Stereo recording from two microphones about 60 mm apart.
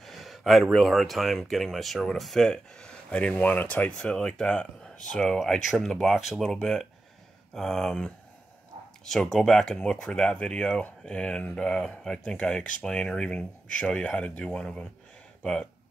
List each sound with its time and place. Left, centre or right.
0.0 s speech: centre